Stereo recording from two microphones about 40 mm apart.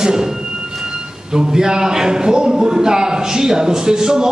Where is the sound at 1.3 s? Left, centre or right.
Centre.